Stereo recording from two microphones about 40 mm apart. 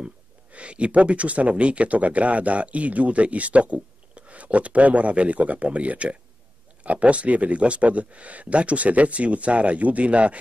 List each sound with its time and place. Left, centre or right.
0.0 s speech: right